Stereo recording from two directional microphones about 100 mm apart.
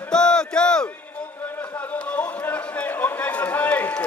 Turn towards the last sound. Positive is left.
turn(degrees=20)  # may be behind; listen again after turning